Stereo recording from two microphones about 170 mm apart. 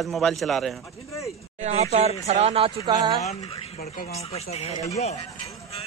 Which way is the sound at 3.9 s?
40° left (ahead or behind).